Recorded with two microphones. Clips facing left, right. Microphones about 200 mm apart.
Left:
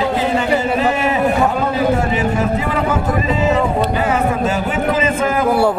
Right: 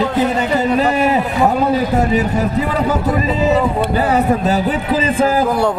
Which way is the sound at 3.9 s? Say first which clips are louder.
Right 2 dB; 35° right (ahead or behind).